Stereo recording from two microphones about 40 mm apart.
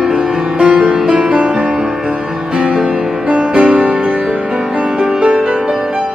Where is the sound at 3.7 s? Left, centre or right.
Right.